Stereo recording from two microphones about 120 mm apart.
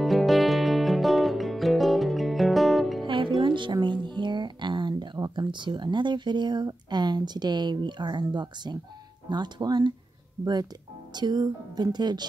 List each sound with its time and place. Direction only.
0.0 s music: centre (ahead or behind)
3.1 s music: 45° right (ahead or behind)
9.3 s speech: 35° right (ahead or behind)